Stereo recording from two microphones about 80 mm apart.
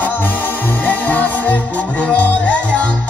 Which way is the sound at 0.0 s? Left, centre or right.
Left.